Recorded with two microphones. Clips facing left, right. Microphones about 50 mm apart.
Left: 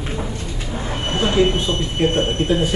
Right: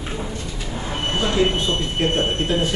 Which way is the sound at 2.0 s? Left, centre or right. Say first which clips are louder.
Left 4 dB; centre.